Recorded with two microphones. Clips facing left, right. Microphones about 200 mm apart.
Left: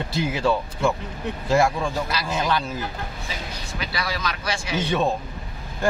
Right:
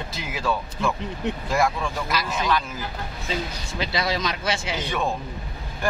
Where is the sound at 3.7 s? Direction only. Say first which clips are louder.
Right 4 dB; 25° right (ahead or behind).